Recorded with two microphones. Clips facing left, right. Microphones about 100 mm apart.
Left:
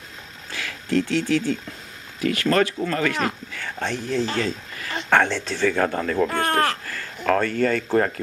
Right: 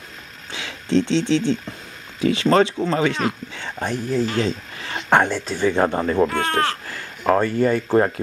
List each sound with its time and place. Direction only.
0.5 s speech: 20° right (ahead or behind)
3.8 s speech: 10° right (ahead or behind)
4.4 s speech: 25° right (ahead or behind)
5.1 s speech: 15° right (ahead or behind)
5.7 s speech: 25° right (ahead or behind)